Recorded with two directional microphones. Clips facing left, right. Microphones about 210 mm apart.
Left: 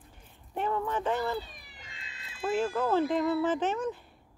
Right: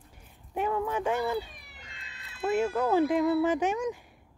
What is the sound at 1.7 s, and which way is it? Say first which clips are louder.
Cat: even; 65° right (ahead or behind).